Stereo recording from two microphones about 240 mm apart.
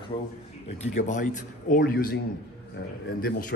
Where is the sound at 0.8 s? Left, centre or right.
Left.